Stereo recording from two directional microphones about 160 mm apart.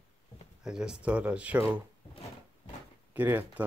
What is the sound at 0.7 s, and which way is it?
Speech, 5° right (ahead or behind).